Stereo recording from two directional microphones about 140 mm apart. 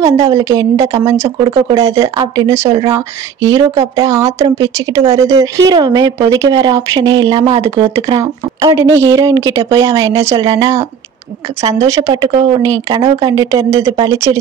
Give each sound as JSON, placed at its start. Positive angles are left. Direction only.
{"t": 0.0, "sound": "speech", "side_deg": -20}
{"t": 7.6, "sound": "speech", "side_deg": -20}